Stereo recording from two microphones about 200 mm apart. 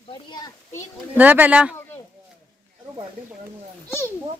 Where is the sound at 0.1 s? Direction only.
20° left (ahead or behind).